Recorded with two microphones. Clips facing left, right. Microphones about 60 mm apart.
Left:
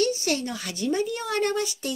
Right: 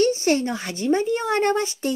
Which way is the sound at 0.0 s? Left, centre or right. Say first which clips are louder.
Right 5 dB; right.